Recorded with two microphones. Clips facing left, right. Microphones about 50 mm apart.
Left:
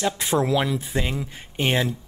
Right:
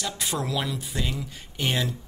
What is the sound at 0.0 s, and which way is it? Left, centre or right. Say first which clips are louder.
Speech: left 7 dB; left.